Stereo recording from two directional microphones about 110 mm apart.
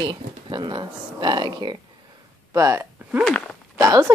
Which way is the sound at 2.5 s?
25° right (ahead or behind).